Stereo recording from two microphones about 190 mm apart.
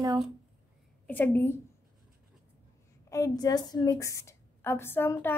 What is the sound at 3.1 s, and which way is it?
A woman's voice, 20° left (ahead or behind).